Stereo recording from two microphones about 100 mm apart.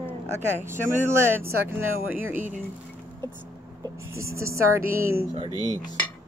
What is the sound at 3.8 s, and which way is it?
Speech, 30° right (ahead or behind).